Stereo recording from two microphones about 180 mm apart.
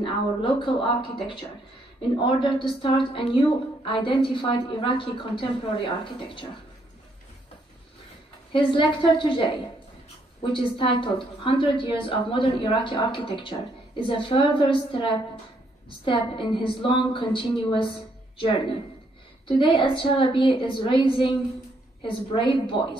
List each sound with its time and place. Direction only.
0.0 s a woman's voice: 30° left (ahead or behind)
8.5 s a woman's voice: 25° left (ahead or behind)
16.1 s a woman's voice: 30° left (ahead or behind)
19.4 s a woman's voice: 25° left (ahead or behind)